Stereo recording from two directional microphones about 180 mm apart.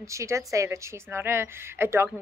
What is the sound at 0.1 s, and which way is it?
A woman's voice, 15° right (ahead or behind).